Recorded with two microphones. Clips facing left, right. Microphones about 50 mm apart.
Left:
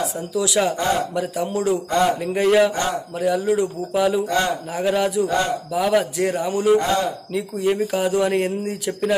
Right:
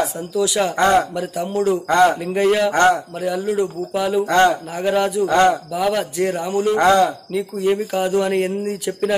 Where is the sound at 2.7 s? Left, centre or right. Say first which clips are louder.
Right 9 dB; right.